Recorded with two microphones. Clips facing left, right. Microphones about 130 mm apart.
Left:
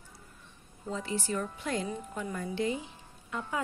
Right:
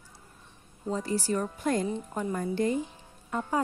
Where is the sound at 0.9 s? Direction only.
40° right (ahead or behind).